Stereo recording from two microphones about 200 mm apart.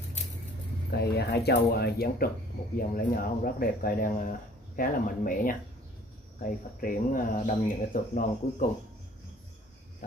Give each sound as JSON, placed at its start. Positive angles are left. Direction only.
{"t": 0.9, "sound": "speech", "side_deg": 55}